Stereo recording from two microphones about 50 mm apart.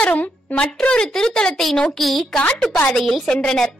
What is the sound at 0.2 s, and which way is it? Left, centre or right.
Speech, left.